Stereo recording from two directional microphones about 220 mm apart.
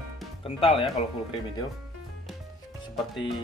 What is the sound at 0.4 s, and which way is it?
Speech, 25° left (ahead or behind).